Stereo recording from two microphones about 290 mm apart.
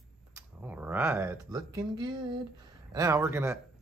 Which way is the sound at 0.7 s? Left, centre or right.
Centre.